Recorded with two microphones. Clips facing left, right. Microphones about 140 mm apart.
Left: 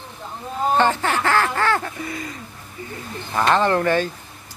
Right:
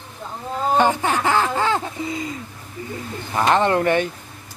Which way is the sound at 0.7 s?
15° right (ahead or behind).